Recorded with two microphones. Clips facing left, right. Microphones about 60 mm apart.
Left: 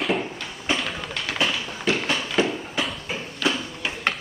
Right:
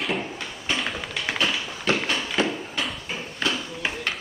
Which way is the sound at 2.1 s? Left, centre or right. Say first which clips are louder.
Left 2 dB; centre.